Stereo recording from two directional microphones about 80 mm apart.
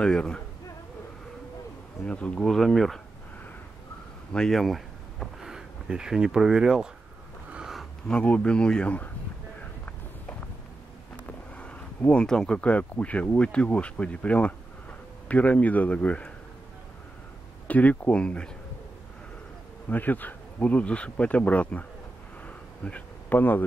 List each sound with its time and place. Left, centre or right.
0.0 s speech: centre
2.0 s speech: centre
2.4 s speech: centre
4.3 s speech: centre
7.5 s a sound: centre
8.1 s speech: centre
11.2 s speech: centre
17.6 s speech: centre
19.9 s speech: left
22.8 s speech: left